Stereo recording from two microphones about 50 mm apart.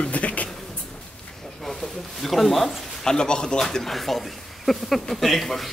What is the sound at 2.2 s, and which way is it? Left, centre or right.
Speech, centre.